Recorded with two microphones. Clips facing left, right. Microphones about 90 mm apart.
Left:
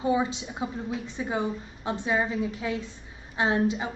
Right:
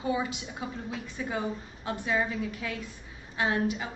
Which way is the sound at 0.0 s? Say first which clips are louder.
Left 5 dB; 25° left (ahead or behind).